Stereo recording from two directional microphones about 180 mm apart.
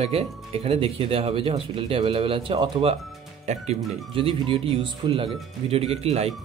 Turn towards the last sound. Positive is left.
turn(degrees=-35)  # may be behind; listen again after turning